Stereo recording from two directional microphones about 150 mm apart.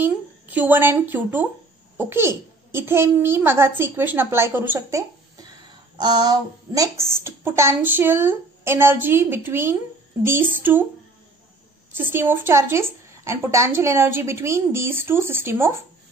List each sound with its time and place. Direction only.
0.0 s a woman's voice: 10° right (ahead or behind)
12.0 s a woman's voice: 15° right (ahead or behind)